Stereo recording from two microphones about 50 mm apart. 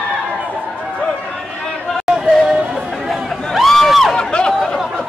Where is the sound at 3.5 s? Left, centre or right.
Centre.